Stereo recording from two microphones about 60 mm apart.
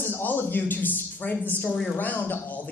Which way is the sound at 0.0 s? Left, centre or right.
Left.